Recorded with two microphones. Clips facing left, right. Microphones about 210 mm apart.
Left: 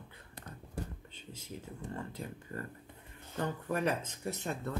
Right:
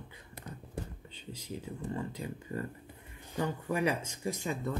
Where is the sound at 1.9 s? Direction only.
15° right (ahead or behind).